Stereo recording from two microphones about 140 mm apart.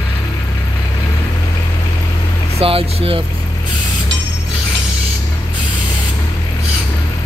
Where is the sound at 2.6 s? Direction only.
40° right (ahead or behind).